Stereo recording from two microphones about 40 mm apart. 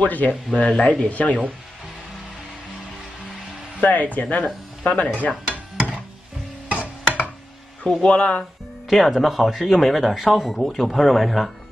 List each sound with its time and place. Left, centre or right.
0.0 s speech: left
0.6 s speech: left
3.8 s speech: left
5.5 s a sound: right
6.7 s music: right
7.8 s speech: centre
8.1 s speech: left
8.9 s speech: centre
10.5 s speech: centre